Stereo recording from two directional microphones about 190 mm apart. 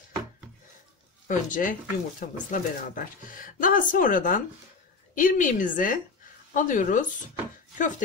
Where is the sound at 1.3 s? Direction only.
45° left (ahead or behind).